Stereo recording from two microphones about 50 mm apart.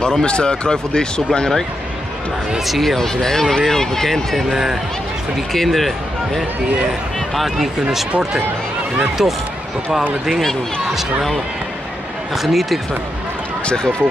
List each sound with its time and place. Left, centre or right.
0.0 s speech: centre
2.6 s speech: centre
9.2 s speech: centre
12.4 s speech: centre
13.7 s speech: centre